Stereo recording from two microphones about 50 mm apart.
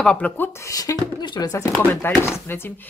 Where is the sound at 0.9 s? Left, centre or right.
Left.